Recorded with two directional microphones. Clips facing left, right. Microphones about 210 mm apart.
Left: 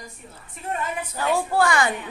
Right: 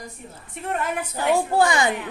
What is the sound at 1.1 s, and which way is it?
Speech, 20° right (ahead or behind).